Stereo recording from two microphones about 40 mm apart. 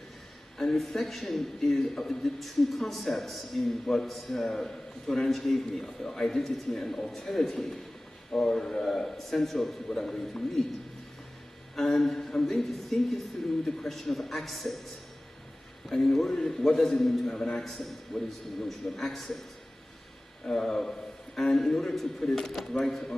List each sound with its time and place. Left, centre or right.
0.6 s a man's voice: centre
11.7 s a man's voice: centre
15.9 s a man's voice: centre
20.5 s a man's voice: centre